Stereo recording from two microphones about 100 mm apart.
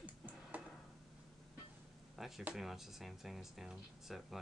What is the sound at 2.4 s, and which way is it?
Speech, 5° right (ahead or behind).